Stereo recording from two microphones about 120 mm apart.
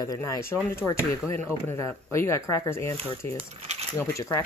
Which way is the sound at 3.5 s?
60° right (ahead or behind).